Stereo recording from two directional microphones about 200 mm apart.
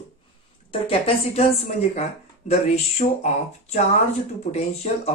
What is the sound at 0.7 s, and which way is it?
Speech, 30° left (ahead or behind).